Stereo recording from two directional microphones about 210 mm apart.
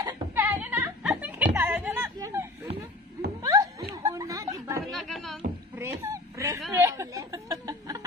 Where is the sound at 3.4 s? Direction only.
15° right (ahead or behind).